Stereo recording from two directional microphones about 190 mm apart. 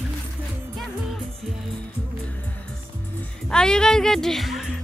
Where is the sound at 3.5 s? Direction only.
5° left (ahead or behind).